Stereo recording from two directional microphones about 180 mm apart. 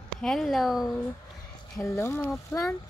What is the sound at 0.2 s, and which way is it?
Speech, centre (ahead or behind).